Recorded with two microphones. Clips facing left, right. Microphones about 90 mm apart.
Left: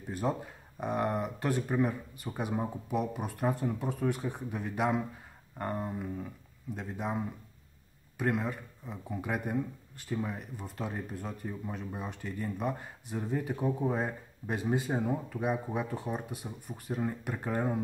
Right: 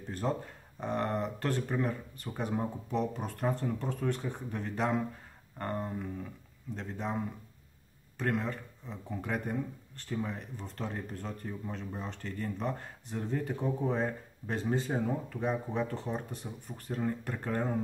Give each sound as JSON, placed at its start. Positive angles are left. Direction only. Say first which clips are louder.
{"t": 0.1, "sound": "speech", "louder": "left 1 dB", "side_deg": 10}